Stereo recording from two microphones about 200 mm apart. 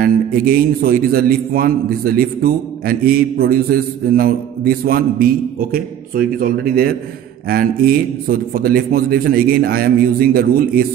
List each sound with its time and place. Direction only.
0.0 s a man's voice: 50° right (ahead or behind)